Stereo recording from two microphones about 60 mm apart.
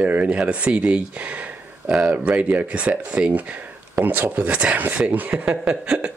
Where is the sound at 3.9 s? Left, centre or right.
Right.